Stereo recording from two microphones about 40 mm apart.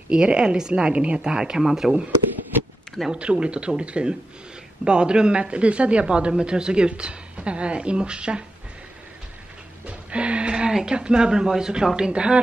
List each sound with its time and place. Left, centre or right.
0.1 s speech: right
3.1 s speech: right
9.8 s music: right
10.5 s speech: centre